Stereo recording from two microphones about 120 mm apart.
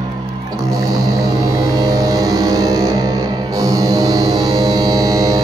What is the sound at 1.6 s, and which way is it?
Music, 30° right (ahead or behind).